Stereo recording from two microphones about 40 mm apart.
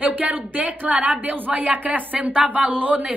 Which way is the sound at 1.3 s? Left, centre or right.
Right.